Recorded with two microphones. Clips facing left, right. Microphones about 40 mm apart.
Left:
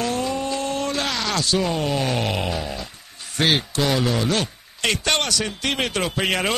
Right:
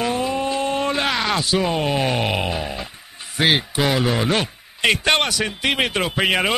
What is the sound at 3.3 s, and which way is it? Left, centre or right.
A man's voice, centre.